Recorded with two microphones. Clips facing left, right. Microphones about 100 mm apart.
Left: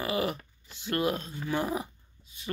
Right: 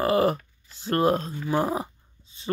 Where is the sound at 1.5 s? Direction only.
35° right (ahead or behind).